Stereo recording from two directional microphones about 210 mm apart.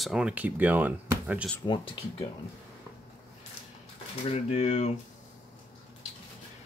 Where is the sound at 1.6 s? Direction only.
20° left (ahead or behind).